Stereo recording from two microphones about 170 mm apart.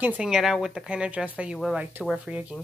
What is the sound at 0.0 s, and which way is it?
Speech, 5° right (ahead or behind).